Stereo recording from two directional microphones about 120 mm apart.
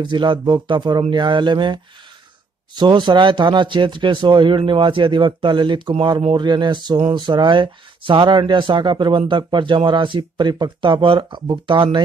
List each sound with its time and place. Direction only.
0.0 s speech: 40° right (ahead or behind)